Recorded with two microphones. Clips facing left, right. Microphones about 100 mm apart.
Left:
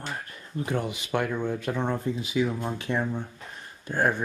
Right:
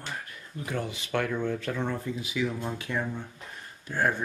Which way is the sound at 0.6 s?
30° left (ahead or behind).